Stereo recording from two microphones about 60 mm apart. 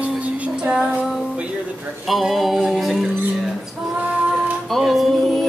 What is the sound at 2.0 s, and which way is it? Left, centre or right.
Music, centre.